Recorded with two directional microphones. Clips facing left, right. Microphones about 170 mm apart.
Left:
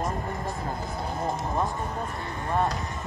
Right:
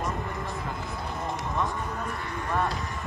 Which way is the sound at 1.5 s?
30° left (ahead or behind).